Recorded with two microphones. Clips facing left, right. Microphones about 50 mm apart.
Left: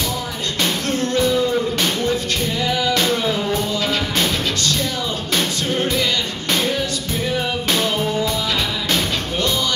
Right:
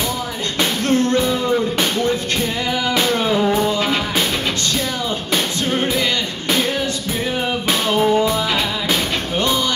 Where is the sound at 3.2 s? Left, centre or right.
Right.